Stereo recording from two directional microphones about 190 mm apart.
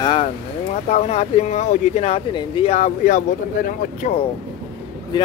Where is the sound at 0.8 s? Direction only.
35° left (ahead or behind).